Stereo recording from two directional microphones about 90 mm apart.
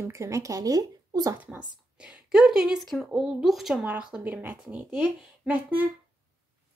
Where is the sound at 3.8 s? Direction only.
15° right (ahead or behind).